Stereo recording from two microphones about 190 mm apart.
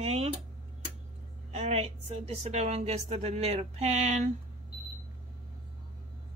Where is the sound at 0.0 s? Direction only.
30° right (ahead or behind).